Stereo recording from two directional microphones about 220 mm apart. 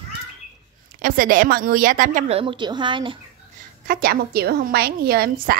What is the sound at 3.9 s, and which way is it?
A woman's voice, 40° right (ahead or behind).